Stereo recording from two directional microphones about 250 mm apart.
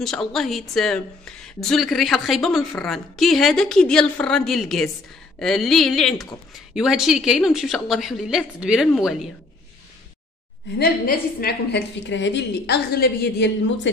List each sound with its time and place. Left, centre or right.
0.0 s speech: centre
10.8 s a woman's voice: left